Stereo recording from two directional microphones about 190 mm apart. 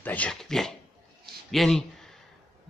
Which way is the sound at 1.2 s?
Centre (ahead or behind).